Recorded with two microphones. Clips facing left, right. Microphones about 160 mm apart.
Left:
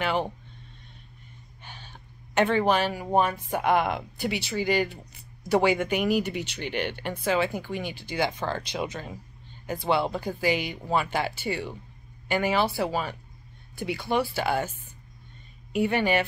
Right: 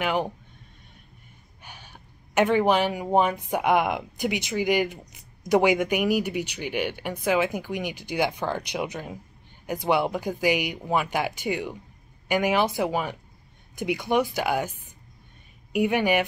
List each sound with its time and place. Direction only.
0.0 s speech: 10° right (ahead or behind)
1.6 s speech: 10° right (ahead or behind)